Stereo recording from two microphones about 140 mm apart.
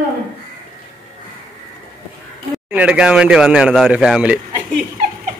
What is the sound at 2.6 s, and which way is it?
Speech, 10° right (ahead or behind).